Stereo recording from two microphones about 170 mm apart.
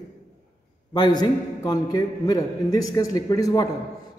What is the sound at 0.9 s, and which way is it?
A man's voice, 25° left (ahead or behind).